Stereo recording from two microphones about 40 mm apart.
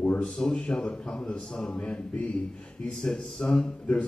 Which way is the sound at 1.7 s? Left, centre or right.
Left.